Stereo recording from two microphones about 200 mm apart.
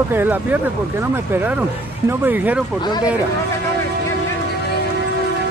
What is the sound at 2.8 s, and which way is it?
Speech, 20° left (ahead or behind).